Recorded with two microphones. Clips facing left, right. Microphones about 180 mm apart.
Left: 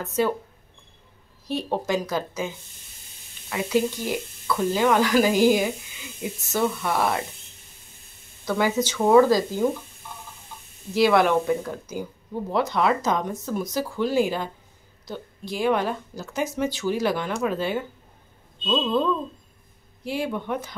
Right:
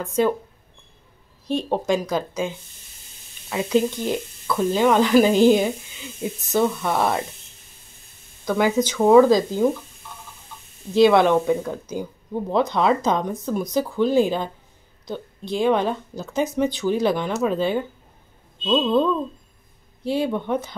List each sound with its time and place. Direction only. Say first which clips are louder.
0.0 s speech: right 3 dB; 15° right (ahead or behind)
1.5 s speech: right 3 dB; 20° right (ahead or behind)
8.5 s speech: right 3 dB; 15° right (ahead or behind)
11.0 s speech: right 4 dB; 20° right (ahead or behind)